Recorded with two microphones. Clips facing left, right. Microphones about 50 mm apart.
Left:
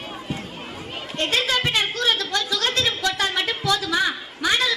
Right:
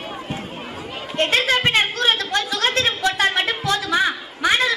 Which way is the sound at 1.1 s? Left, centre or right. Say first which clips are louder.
Right 4 dB; right.